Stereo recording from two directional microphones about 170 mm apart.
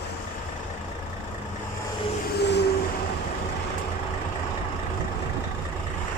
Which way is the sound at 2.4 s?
80° left.